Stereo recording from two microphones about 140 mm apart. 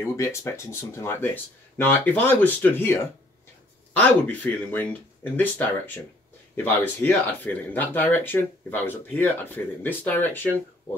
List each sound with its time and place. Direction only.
0.0 s speech: 20° left (ahead or behind)